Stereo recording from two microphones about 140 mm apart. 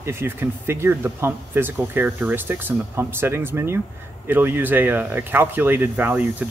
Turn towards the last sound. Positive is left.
turn(degrees=-10)  # may be behind; listen again after turning